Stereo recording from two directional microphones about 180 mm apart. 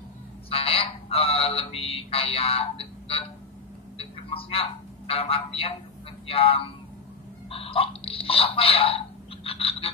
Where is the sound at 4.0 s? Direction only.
30° left (ahead or behind).